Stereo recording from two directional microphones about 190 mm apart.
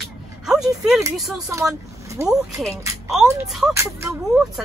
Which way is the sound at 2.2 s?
15° right (ahead or behind).